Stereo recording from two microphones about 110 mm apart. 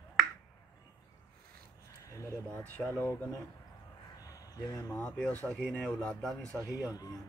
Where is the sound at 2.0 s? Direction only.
30° left (ahead or behind).